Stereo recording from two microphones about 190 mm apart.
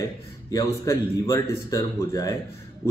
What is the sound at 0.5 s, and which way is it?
Speech, 15° left (ahead or behind).